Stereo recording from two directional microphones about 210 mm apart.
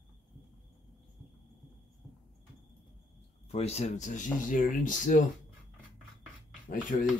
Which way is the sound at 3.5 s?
30° left (ahead or behind).